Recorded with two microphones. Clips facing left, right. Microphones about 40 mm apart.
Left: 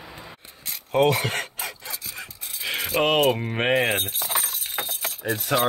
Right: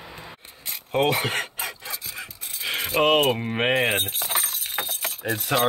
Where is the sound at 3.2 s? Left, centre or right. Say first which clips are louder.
Even; centre.